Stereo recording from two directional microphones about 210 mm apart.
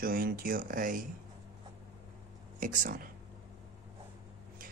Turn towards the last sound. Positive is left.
turn(degrees=-40)  # may be behind; listen again after turning